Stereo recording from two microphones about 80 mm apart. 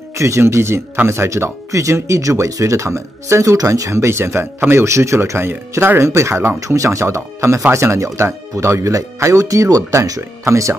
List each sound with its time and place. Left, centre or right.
0.2 s speech: right